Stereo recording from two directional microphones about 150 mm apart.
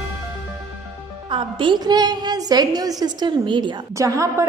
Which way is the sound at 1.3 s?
35° right (ahead or behind).